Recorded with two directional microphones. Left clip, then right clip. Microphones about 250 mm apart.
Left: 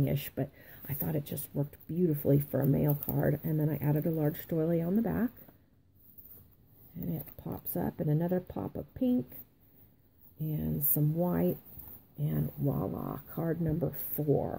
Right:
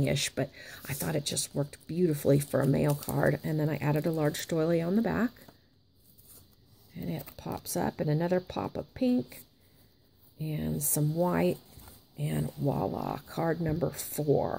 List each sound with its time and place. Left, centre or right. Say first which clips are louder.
0.0 s speech: right 5 dB; centre
2.9 s speech: right 3 dB; centre
3.2 s speech: right 4 dB; centre
7.0 s speech: right 3 dB; centre
10.4 s speech: right 2 dB; centre
12.6 s speech: right 5 dB; centre